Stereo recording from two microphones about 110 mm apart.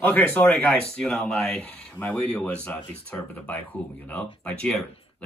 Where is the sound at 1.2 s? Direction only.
5° left (ahead or behind).